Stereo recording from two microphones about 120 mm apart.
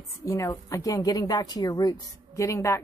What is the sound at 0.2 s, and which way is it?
A woman's voice, 25° left (ahead or behind).